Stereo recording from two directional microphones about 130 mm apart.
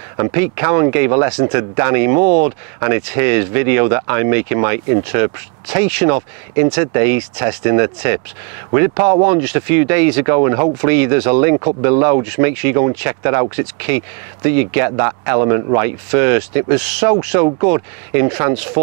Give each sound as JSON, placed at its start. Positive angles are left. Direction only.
{"t": 0.2, "sound": "speech", "side_deg": -20}